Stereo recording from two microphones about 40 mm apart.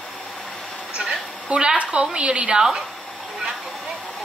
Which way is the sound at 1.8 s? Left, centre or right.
Right.